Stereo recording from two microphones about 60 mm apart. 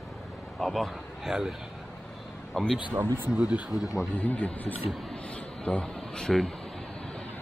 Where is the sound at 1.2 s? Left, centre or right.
Centre.